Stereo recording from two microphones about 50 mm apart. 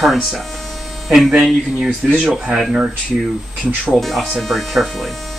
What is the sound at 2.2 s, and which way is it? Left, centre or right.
Speech, centre.